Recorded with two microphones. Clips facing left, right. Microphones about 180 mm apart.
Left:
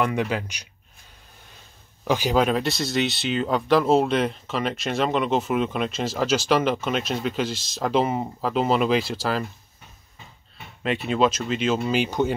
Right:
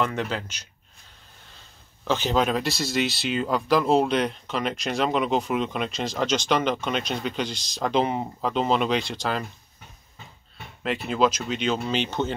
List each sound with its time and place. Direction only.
0.0 s speech: 10° left (ahead or behind)
2.0 s speech: 10° left (ahead or behind)
10.8 s speech: centre (ahead or behind)